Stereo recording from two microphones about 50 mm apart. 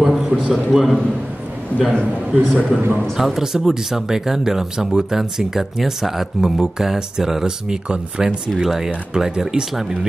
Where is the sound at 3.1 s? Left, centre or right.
Centre.